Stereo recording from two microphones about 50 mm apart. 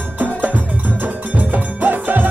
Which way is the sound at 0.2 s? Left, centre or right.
Right.